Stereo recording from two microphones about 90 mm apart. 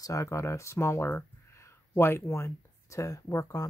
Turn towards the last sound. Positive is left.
turn(degrees=35)  # may be behind; listen again after turning